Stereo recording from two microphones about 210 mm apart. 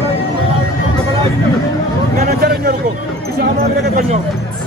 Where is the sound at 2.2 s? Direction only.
45° right (ahead or behind).